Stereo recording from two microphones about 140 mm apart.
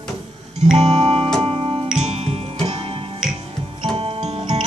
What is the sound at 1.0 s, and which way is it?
Music, 40° right (ahead or behind).